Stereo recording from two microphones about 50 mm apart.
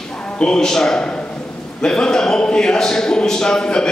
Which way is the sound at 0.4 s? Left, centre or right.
Centre.